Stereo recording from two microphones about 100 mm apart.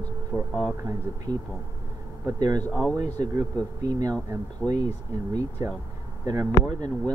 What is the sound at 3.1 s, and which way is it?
Speech, 40° right (ahead or behind).